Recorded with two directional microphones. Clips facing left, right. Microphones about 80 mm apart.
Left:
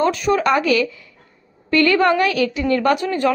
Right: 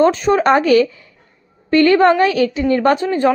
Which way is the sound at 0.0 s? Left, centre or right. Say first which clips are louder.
Right 4 dB; right.